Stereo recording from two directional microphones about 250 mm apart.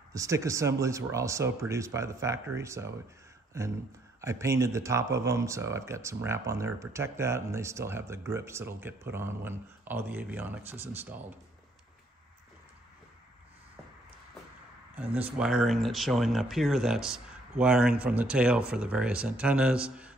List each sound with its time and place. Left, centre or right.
0.1 s speech: centre
4.2 s speech: centre
15.0 s speech: centre